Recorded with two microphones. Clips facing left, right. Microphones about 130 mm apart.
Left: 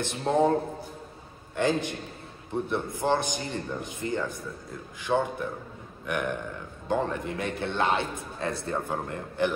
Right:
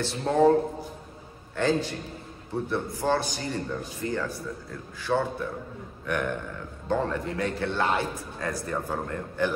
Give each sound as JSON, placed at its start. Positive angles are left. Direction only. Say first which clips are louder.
{"t": 0.0, "sound": "a man's voice", "louder": "right 2 dB", "side_deg": 20}
{"t": 1.6, "sound": "a man's voice", "louder": "right 1 dB", "side_deg": 20}